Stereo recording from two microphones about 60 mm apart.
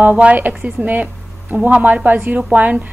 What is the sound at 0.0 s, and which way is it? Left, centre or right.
A woman's voice, right.